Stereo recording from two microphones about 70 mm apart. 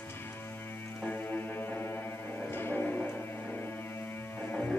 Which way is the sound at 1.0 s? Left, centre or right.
Left.